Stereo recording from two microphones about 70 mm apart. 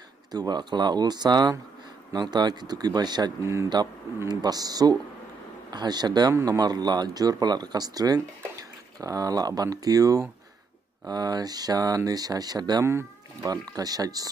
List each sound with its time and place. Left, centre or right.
0.3 s speech: right
4.3 s speech: right
5.7 s speech: right
6.4 s speech: right
11.1 s speech: right
12.8 s speech: right
13.5 s speech: right